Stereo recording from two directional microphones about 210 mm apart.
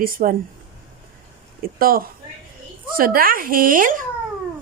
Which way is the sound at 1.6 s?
45° right (ahead or behind).